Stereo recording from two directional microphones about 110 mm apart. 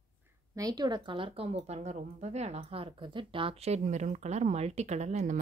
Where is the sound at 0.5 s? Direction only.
35° right (ahead or behind).